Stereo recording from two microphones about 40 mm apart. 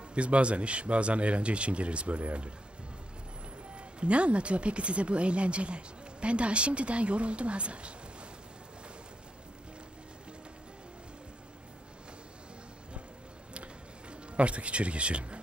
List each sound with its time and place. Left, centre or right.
0.1 s speech: right
3.7 s speech: right
14.3 s speech: right